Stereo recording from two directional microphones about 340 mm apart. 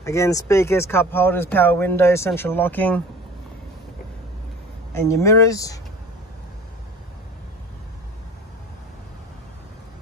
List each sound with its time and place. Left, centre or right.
0.0 s speech: centre
4.9 s speech: centre